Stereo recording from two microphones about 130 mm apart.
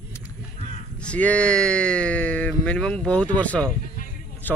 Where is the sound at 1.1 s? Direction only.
10° left (ahead or behind).